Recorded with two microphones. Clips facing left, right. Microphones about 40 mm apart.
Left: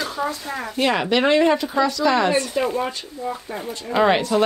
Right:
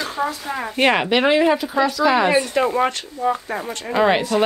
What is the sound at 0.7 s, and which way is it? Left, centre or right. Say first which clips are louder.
Speech: right 3 dB; right.